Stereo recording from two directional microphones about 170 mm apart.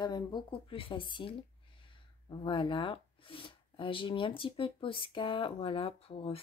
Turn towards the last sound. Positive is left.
turn(degrees=35)  # may be behind; listen again after turning